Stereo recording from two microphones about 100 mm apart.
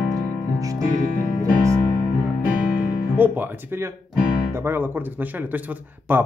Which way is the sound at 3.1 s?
20° right (ahead or behind).